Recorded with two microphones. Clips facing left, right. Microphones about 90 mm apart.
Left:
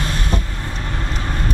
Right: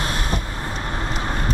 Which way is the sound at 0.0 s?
15° right (ahead or behind).